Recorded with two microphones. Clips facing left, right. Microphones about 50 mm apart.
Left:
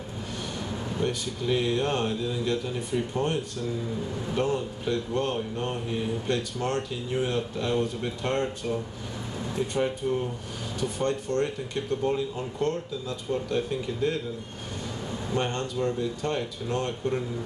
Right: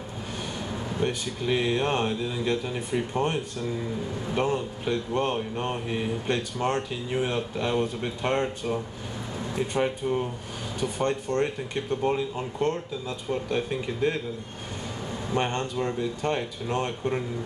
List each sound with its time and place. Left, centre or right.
0.7 s air conditioning: centre
1.0 s speech: right
9.6 s speech: right
15.3 s speech: right